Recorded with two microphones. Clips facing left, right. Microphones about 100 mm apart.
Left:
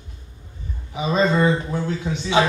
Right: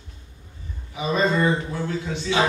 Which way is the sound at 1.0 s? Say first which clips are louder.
Left 2 dB; 20° left (ahead or behind).